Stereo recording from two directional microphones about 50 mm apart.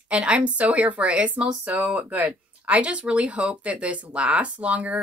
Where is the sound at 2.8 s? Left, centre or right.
Right.